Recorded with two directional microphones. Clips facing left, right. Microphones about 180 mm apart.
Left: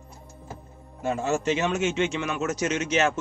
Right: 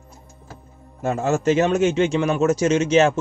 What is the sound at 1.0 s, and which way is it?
A man's voice, 45° right (ahead or behind).